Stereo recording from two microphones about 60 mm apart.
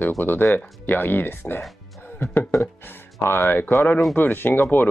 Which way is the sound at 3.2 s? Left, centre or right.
Left.